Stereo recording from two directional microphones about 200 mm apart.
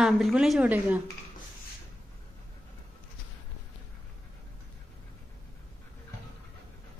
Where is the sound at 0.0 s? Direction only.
5° right (ahead or behind).